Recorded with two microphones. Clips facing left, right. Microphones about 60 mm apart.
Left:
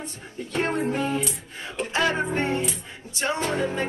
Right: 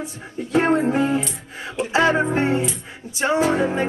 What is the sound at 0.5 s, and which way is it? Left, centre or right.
Music, centre.